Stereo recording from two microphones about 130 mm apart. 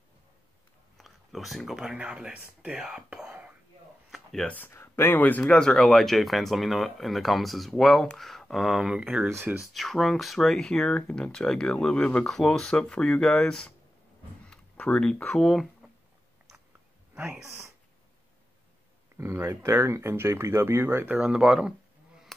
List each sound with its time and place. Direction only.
0.9 s speech: centre (ahead or behind)
4.1 s a sound: 5° left (ahead or behind)
4.6 s speech: 15° left (ahead or behind); by 9.3 s 5° right (ahead or behind)
9.3 s speech: 15° right (ahead or behind)
9.7 s speech: centre (ahead or behind)
17.1 s speech: 10° right (ahead or behind)
19.1 s speech: 20° right (ahead or behind); by 21.7 s 5° right (ahead or behind)